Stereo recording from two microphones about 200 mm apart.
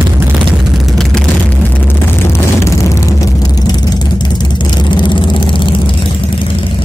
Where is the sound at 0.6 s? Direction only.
Centre (ahead or behind); by 5.9 s 25° left (ahead or behind).